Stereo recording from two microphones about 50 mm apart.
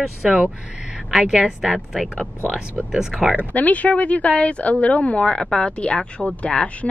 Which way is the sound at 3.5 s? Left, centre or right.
Left.